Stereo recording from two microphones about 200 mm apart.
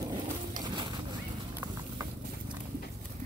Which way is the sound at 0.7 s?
20° right (ahead or behind).